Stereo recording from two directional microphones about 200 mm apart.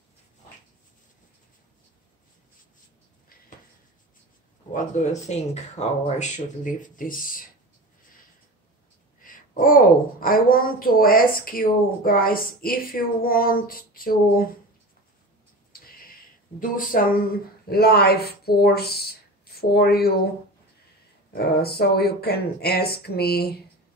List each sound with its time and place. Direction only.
4.7 s speech: 35° left (ahead or behind)
9.2 s a child's voice: 45° left (ahead or behind)
15.8 s a sound: 45° left (ahead or behind)
17.6 s speech: 50° left (ahead or behind)
21.4 s a child's voice: 50° left (ahead or behind)